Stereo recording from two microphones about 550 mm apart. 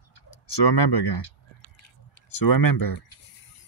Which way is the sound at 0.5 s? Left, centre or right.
Left.